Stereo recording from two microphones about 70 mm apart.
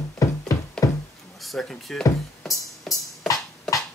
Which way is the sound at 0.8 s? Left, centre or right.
Left.